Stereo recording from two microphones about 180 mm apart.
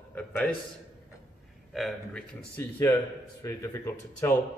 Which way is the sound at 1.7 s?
Centre (ahead or behind).